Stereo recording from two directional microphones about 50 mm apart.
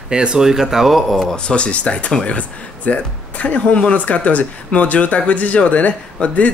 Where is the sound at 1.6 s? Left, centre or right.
Left.